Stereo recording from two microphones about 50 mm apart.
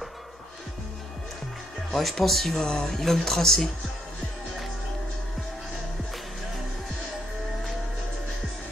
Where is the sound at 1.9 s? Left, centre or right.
Centre.